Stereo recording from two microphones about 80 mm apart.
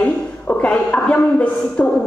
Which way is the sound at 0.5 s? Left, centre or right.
Centre.